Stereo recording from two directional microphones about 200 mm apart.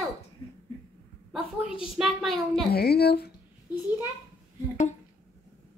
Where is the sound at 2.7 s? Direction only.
50° left (ahead or behind).